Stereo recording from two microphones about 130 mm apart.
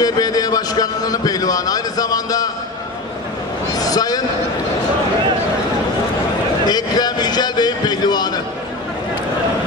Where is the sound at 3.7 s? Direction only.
30° left (ahead or behind).